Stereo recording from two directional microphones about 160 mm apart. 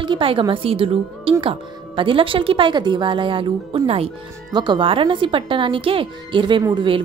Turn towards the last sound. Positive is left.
turn(degrees=-30)  # may be behind; listen again after turning